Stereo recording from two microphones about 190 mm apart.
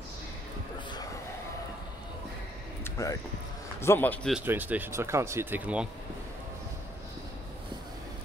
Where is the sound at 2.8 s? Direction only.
15° left (ahead or behind).